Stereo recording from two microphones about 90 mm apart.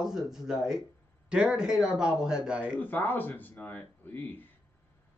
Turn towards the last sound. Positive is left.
turn(degrees=20)  # may be behind; listen again after turning